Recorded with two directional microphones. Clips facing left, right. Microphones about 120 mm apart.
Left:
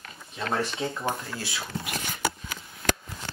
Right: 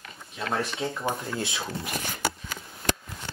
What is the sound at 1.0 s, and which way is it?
Speech, 20° right (ahead or behind).